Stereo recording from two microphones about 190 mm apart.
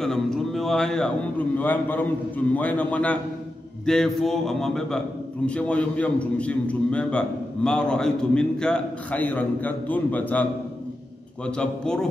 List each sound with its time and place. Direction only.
0.0 s a man's voice: centre (ahead or behind)
11.4 s a man's voice: 5° left (ahead or behind)